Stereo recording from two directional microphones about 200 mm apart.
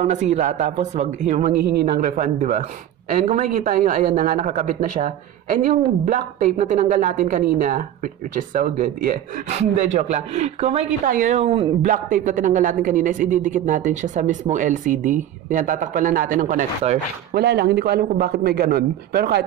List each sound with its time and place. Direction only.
0.0 s speech: 35° right (ahead or behind)
17.3 s a man's voice: 55° right (ahead or behind)